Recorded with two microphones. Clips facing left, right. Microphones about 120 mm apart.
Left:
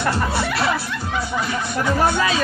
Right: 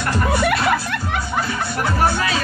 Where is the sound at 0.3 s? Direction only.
60° right (ahead or behind).